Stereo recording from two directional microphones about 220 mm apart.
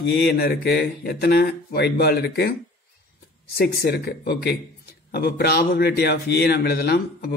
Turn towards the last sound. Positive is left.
turn(degrees=45)  # may be behind; listen again after turning